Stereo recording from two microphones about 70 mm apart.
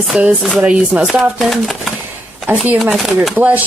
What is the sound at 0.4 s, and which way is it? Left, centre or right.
Speech, centre.